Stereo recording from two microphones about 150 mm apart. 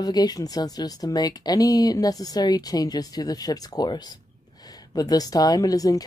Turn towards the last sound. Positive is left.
turn(degrees=25)  # may be behind; listen again after turning